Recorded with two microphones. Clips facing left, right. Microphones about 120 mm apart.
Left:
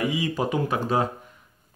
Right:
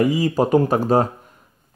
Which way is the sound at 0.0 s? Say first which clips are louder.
Right 7 dB; 40° right (ahead or behind).